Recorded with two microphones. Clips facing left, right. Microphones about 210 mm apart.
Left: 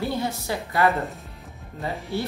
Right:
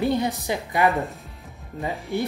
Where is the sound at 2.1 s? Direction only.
15° right (ahead or behind).